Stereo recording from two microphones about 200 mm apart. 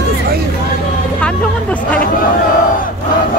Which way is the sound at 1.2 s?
5° left (ahead or behind).